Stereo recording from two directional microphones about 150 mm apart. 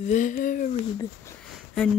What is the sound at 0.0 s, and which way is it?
Speech, 55° left (ahead or behind).